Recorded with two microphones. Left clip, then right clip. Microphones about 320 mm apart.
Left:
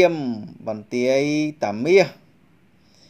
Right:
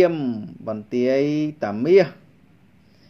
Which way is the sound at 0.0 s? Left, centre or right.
Left.